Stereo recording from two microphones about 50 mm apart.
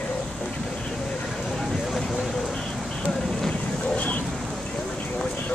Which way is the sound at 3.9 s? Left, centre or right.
Left.